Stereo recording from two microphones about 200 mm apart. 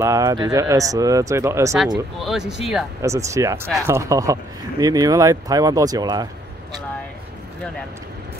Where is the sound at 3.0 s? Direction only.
15° right (ahead or behind).